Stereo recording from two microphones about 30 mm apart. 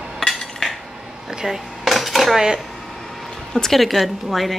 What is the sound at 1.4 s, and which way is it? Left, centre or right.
Dishes, right.